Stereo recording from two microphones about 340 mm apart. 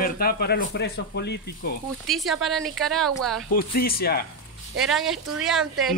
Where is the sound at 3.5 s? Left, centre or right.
Left.